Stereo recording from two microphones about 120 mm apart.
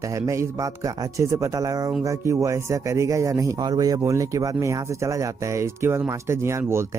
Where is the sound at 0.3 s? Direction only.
25° right (ahead or behind).